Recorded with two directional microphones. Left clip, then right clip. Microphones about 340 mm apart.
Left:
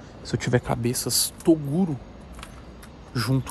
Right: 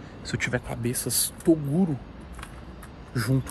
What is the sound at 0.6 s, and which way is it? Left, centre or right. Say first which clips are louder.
Speech: left 7 dB; left.